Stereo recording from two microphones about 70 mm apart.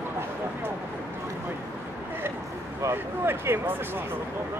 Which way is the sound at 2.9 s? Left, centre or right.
Right.